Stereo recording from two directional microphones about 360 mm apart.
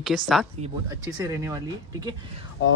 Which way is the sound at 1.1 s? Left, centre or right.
Centre.